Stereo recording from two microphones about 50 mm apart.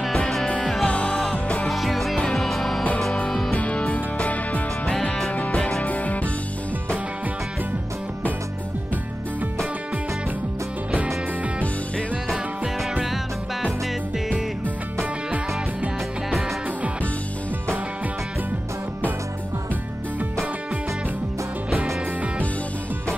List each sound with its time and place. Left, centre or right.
0.8 s music: left
1.7 s music: centre
2.1 s music: centre
3.5 s music: left